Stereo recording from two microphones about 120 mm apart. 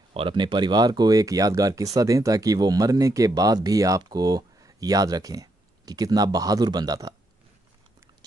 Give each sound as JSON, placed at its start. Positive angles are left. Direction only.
{"t": 0.1, "sound": "speech", "side_deg": -45}